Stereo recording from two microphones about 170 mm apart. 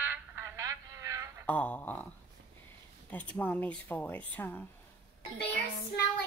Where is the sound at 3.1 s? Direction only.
10° left (ahead or behind).